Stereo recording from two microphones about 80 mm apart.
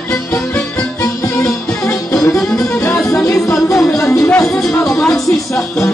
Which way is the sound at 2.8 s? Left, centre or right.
Left.